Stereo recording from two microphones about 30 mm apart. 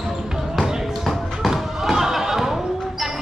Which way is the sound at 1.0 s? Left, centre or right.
Centre.